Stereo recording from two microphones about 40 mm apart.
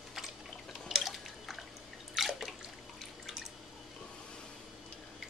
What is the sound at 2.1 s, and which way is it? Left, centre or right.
Drip, centre.